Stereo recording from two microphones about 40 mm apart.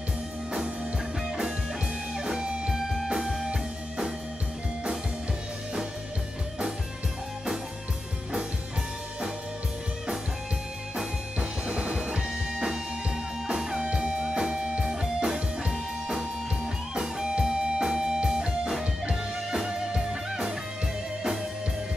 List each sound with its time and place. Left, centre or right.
1.2 s music: centre
2.7 s music: centre
11.3 s music: right
13.8 s music: right